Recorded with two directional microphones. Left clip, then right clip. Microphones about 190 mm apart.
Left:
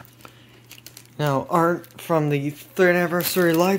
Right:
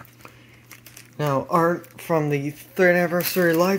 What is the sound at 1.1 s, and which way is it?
Speech, 20° left (ahead or behind).